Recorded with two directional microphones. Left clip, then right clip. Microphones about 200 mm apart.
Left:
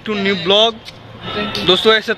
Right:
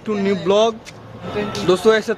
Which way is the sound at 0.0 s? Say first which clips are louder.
Left 2 dB; 5° right (ahead or behind).